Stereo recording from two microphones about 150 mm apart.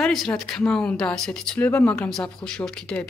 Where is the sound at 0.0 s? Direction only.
5° left (ahead or behind).